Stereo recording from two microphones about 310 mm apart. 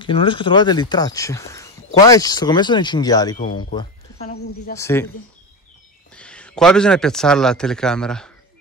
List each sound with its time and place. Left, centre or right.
0.0 s speech: centre
4.7 s speech: centre
6.1 s speech: centre